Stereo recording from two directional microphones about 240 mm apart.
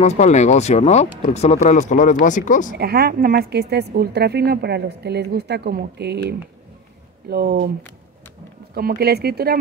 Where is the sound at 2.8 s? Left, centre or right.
Right.